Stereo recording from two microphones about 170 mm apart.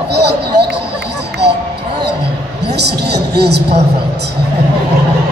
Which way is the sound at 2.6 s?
75° right (ahead or behind).